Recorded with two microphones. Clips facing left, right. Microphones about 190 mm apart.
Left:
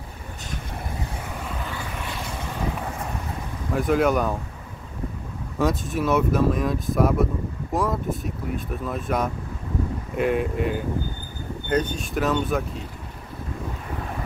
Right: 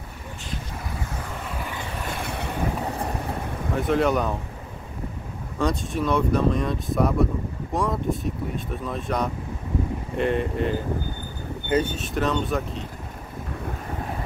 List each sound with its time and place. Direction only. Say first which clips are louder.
2.0 s vehicle: right 2 dB; 60° right (ahead or behind)
3.7 s speech: left 1 dB; centre (ahead or behind)
5.6 s speech: left 1 dB; 5° left (ahead or behind)